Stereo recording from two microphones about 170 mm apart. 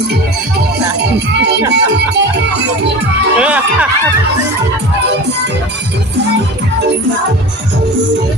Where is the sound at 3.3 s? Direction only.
10° right (ahead or behind).